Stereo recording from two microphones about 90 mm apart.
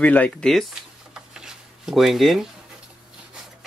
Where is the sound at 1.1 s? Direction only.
5° right (ahead or behind).